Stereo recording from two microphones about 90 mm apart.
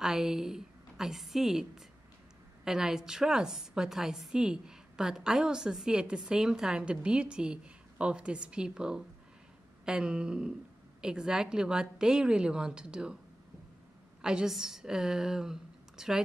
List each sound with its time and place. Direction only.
0.0 s a woman's voice: 5° right (ahead or behind)
14.2 s a woman's voice: 5° right (ahead or behind)